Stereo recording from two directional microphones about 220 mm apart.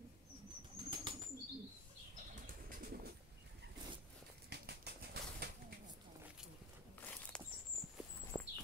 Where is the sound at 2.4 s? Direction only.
40° right (ahead or behind).